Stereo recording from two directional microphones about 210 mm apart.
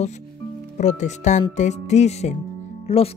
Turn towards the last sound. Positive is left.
turn(degrees=30)  # may be behind; listen again after turning